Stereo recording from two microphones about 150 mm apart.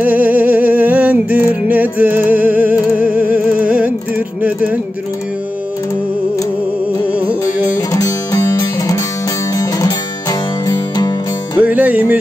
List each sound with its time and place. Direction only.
0.0 s music: 10° right (ahead or behind)
7.7 s music: 20° left (ahead or behind)
11.6 s music: 10° right (ahead or behind)